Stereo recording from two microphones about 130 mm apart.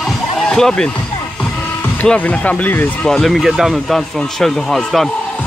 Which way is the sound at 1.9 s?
10° left (ahead or behind).